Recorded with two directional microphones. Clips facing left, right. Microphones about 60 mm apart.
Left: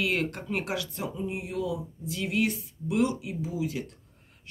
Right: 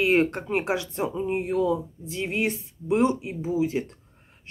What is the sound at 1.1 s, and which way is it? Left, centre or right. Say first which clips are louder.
Speech: right 8 dB; right.